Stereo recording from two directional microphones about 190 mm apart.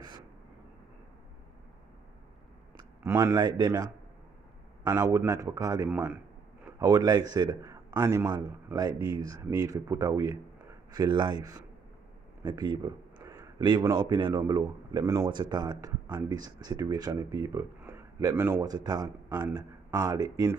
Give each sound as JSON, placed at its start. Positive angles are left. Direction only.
{"t": 2.8, "sound": "speech", "side_deg": -15}
{"t": 4.8, "sound": "a man's voice", "side_deg": -15}